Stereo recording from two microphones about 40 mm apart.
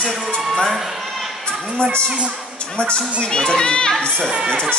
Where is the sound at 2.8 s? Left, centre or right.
Left.